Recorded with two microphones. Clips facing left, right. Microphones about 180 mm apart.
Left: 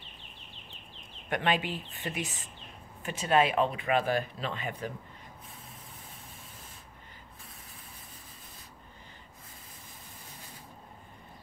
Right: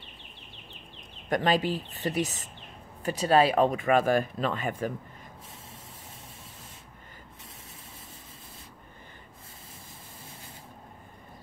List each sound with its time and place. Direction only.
1.3 s speech: 40° right (ahead or behind)